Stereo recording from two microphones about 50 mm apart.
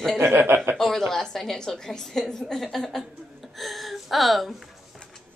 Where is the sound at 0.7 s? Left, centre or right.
Centre.